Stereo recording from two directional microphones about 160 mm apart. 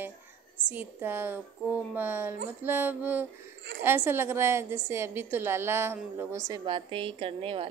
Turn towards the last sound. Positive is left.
turn(degrees=-35)  # may be behind; listen again after turning